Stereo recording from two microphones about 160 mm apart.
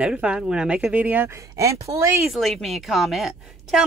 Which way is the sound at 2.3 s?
Centre (ahead or behind).